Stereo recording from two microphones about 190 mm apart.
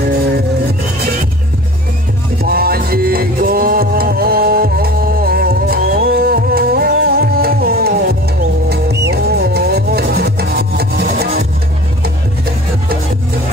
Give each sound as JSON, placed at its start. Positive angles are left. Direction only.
{"t": 2.4, "sound": "music", "side_deg": -55}
{"t": 9.1, "sound": "rub", "side_deg": -60}